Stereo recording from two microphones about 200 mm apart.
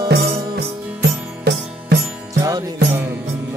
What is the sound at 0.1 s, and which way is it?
Music, 55° right (ahead or behind).